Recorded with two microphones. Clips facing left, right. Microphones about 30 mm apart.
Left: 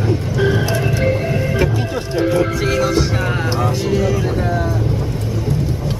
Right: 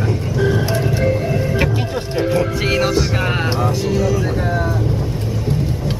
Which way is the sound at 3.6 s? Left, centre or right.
Centre.